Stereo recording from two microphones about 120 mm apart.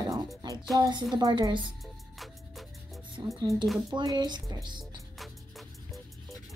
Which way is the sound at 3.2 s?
30° right (ahead or behind).